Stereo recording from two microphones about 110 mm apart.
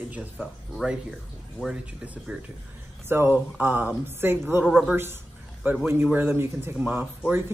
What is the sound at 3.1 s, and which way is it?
Speech, 20° right (ahead or behind).